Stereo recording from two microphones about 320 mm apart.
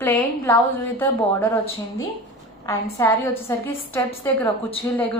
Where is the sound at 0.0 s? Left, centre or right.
Centre.